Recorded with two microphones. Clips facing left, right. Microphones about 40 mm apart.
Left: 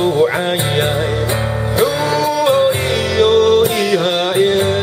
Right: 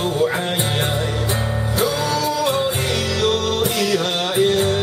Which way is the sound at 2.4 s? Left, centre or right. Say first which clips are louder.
Left 7 dB; centre.